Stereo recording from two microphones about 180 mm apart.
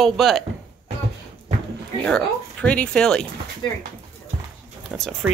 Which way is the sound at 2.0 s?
5° left (ahead or behind).